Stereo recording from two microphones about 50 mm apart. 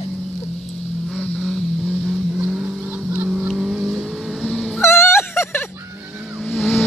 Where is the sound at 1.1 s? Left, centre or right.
Left.